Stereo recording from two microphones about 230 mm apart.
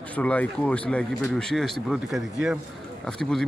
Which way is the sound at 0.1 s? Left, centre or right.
Centre.